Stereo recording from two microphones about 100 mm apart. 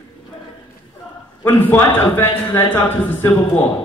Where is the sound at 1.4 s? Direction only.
20° left (ahead or behind).